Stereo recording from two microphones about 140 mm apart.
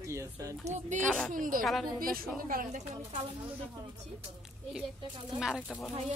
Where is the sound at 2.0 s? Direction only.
90° right.